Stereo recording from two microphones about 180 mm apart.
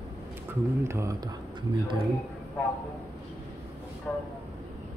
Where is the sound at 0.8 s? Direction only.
15° right (ahead or behind).